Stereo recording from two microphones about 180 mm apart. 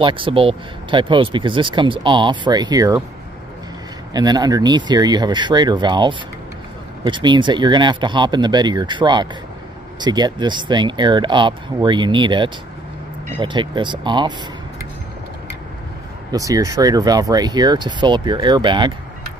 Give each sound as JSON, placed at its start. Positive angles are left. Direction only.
{"t": 0.0, "sound": "speech", "side_deg": -30}
{"t": 4.1, "sound": "speech", "side_deg": -20}
{"t": 16.3, "sound": "speech", "side_deg": -20}